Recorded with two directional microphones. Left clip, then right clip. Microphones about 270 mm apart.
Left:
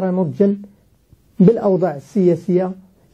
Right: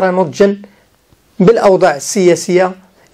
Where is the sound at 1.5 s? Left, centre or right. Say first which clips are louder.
Right 9 dB; centre.